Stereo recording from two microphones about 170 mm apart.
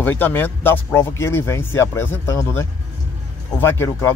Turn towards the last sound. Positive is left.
turn(degrees=15)  # may be behind; listen again after turning